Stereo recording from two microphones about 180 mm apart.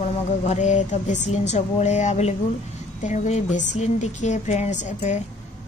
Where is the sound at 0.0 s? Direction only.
35° left (ahead or behind).